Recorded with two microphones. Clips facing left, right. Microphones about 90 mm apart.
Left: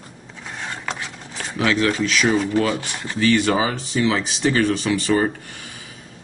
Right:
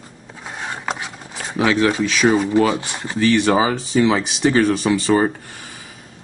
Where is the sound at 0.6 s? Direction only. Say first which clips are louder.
Right 3 dB; 15° right (ahead or behind).